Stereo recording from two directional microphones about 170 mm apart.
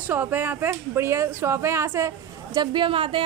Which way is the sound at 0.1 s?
10° right (ahead or behind).